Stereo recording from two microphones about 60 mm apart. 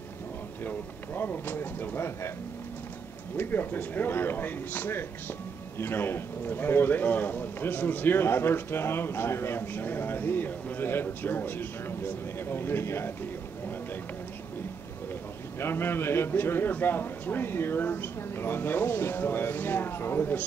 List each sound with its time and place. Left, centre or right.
0.7 s a man's voice: left
3.3 s a man's voice: left
15.6 s a man's voice: left